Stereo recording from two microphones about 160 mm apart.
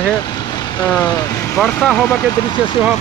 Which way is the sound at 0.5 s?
25° left (ahead or behind).